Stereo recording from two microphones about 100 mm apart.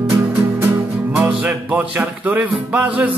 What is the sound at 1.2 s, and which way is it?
Music, 15° right (ahead or behind).